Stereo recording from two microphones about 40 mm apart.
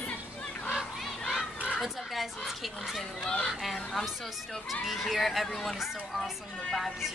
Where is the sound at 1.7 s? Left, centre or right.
Centre.